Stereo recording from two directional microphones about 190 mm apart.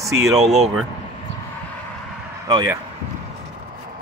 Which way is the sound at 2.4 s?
20° right (ahead or behind).